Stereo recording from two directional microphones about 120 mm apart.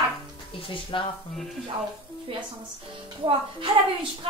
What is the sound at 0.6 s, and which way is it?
Speech, 45° left (ahead or behind).